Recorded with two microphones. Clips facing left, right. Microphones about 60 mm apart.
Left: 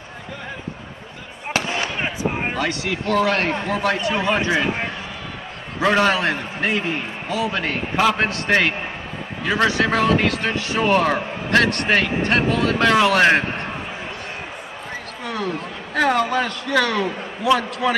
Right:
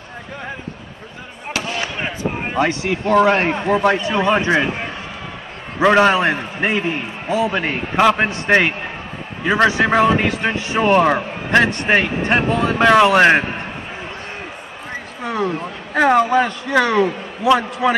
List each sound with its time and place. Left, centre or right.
1.5 s fireworks: left
2.5 s a man's voice: right
5.8 s a man's voice: right
15.2 s speech: right